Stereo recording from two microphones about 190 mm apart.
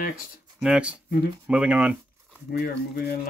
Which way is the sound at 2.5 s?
55° left (ahead or behind).